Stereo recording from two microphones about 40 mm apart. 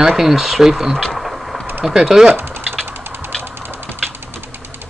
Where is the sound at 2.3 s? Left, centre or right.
Right.